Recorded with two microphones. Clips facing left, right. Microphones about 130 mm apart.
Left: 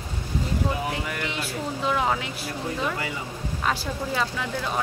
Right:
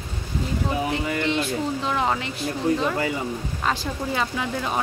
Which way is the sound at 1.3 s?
5° left (ahead or behind).